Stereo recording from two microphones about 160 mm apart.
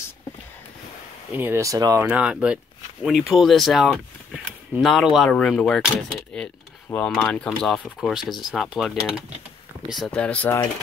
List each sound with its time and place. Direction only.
1.3 s speech: 15° right (ahead or behind)
2.0 s speech: 5° right (ahead or behind); by 10.7 s 10° left (ahead or behind)